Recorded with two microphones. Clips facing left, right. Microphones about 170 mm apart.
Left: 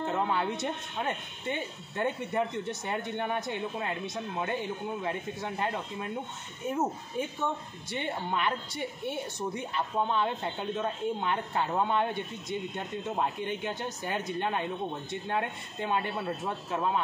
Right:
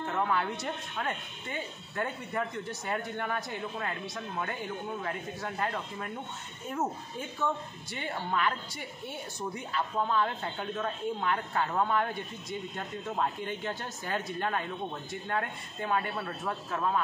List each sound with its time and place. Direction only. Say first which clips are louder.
0.0 s speech: left 1 dB; 25° left (ahead or behind)
7.9 s speech: left 1 dB; 20° left (ahead or behind)